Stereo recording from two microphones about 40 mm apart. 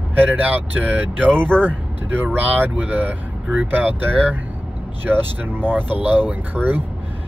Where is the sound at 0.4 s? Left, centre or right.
Right.